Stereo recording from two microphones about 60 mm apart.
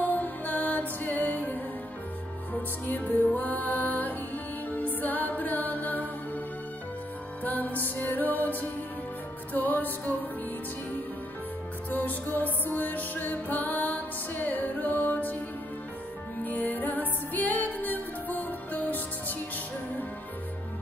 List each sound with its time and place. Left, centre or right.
0.0 s music: left
2.9 s music: left
7.4 s music: left
11.9 s music: left
16.4 s music: left